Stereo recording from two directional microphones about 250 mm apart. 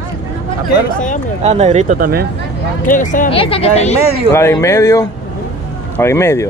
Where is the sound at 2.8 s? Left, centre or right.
Left.